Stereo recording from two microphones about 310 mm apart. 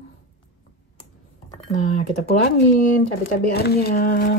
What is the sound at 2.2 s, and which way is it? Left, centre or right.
Speech, left.